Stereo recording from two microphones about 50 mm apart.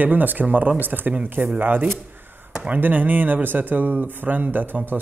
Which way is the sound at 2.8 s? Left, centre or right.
Right.